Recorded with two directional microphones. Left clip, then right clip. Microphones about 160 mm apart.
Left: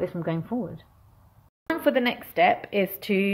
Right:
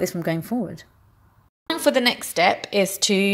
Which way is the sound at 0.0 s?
25° right (ahead or behind).